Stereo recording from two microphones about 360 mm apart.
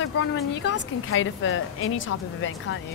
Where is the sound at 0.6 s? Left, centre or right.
Left.